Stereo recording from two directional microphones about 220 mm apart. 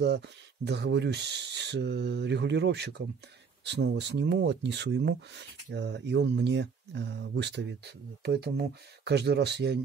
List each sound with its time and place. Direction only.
0.7 s speech: 50° right (ahead or behind)